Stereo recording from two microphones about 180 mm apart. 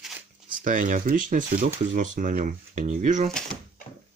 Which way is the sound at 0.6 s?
45° right (ahead or behind).